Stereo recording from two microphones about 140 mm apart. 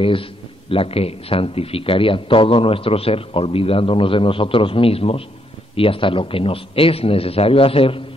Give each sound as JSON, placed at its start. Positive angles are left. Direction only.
{"t": 0.0, "sound": "a man's voice", "side_deg": 40}